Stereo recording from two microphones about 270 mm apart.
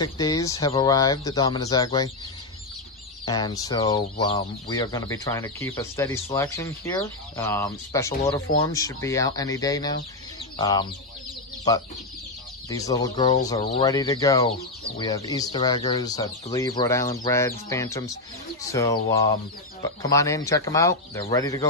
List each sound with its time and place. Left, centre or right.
0.0 s speech: centre
3.3 s speech: centre
12.6 s speech: centre